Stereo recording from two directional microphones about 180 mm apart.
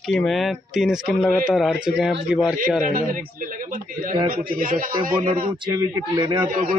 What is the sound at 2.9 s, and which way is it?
Speech, 50° right (ahead or behind).